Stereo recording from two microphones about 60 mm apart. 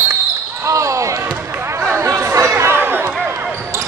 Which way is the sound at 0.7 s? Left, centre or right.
Right.